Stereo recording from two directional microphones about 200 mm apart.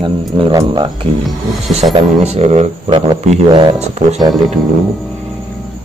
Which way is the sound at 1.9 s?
35° right (ahead or behind).